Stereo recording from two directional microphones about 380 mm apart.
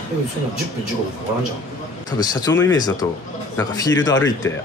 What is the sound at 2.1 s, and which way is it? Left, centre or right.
Speech, centre.